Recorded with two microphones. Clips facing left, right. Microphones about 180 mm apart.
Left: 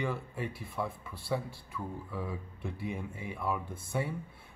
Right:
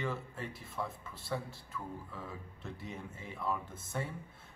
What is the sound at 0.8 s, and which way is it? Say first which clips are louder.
Speech: left 5 dB; 20° right (ahead or behind).